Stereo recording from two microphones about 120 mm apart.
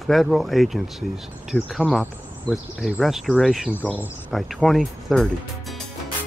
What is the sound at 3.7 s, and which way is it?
Speech, 15° left (ahead or behind).